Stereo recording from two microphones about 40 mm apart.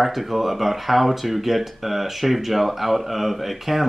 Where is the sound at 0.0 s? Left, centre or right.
Centre.